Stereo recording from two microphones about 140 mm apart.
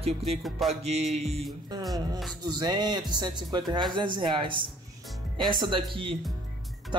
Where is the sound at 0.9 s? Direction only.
50° right (ahead or behind).